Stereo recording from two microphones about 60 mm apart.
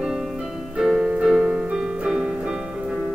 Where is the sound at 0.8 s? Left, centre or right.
Centre.